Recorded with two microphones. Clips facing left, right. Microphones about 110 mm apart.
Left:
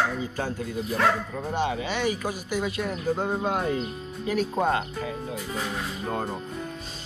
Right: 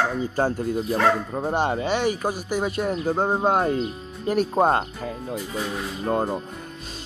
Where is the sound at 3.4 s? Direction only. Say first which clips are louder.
Right 5 dB; 50° right (ahead or behind).